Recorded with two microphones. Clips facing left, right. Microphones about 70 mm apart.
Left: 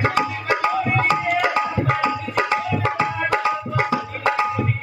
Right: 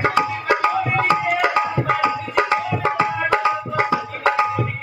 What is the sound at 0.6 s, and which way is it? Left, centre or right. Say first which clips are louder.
Tabla: even; right.